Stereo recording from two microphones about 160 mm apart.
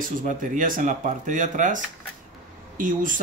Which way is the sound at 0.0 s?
55° right (ahead or behind).